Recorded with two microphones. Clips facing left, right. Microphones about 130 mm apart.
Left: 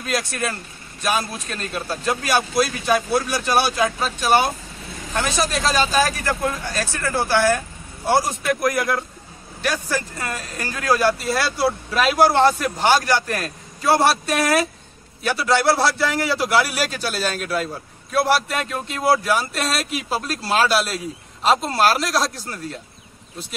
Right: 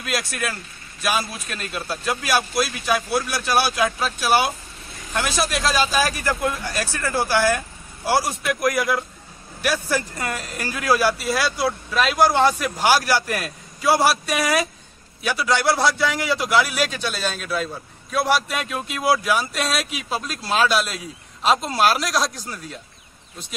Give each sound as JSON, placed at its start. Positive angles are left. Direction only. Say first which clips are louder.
{"t": 0.1, "sound": "speech", "louder": "left 2 dB", "side_deg": -5}
{"t": 9.6, "sound": "speech", "louder": "right 1 dB", "side_deg": -10}